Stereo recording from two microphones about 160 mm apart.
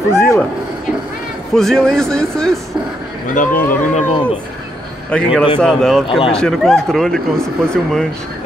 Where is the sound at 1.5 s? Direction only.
Centre (ahead or behind).